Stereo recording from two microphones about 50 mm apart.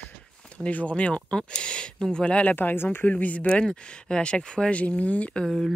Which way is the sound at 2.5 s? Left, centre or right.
Left.